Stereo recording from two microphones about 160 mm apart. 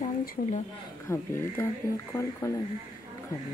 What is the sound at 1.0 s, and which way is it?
Speech, 15° left (ahead or behind).